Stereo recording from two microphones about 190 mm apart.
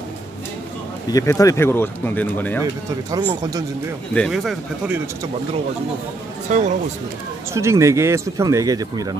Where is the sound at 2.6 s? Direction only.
20° right (ahead or behind).